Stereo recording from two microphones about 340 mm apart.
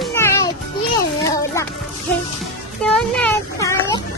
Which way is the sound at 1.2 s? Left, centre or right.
Centre.